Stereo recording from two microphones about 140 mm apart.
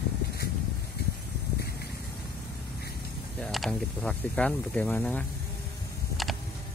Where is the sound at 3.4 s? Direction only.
5° left (ahead or behind).